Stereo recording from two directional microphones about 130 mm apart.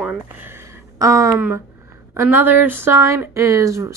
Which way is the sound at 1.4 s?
15° right (ahead or behind).